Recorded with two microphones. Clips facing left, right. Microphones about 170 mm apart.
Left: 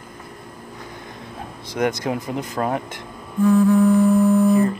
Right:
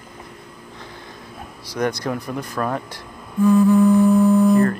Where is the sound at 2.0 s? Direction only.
20° left (ahead or behind).